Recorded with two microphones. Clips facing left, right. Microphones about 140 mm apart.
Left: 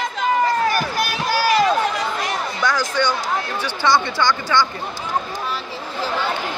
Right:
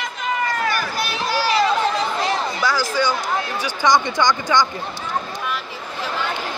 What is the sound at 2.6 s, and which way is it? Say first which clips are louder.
Speech: left 2 dB; 5° right (ahead or behind).